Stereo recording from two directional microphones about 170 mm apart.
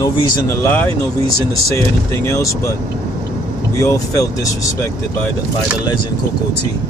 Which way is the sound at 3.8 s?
20° left (ahead or behind).